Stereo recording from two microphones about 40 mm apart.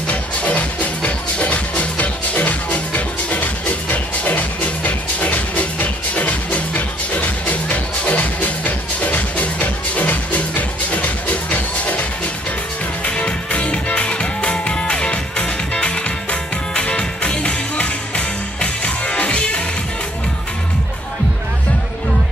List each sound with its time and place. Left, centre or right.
0.1 s music: left
13.0 s music: left